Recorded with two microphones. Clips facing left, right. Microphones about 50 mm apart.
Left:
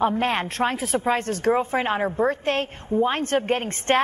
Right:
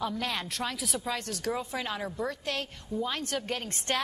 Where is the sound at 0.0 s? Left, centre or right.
Left.